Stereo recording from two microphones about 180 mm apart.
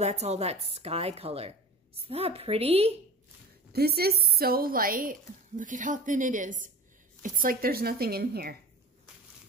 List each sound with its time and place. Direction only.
0.0 s a woman's voice: 35° right (ahead or behind)
3.7 s a woman's voice: 60° right (ahead or behind)